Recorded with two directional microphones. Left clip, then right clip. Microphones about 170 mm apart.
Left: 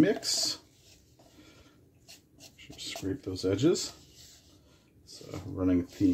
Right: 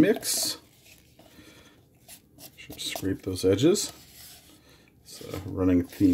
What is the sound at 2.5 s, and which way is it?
Speech, 35° right (ahead or behind).